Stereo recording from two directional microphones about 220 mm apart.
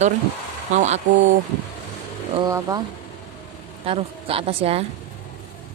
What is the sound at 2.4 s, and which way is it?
Speech, 15° right (ahead or behind).